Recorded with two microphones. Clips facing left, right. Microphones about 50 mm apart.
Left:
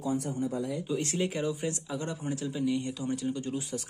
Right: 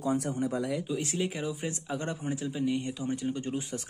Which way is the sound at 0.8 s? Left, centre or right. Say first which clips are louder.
Left 1 dB; centre.